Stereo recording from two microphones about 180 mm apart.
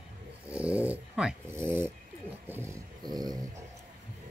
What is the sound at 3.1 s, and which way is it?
Dog, 20° right (ahead or behind).